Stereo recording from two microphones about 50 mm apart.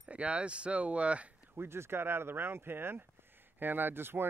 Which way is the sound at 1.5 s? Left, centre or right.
Right.